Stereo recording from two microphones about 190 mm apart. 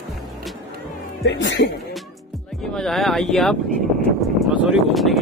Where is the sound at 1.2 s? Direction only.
75° left (ahead or behind).